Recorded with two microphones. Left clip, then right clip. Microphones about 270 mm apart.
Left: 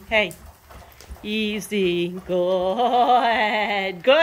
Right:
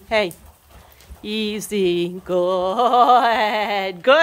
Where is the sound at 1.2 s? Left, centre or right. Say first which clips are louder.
Right 1 dB; centre.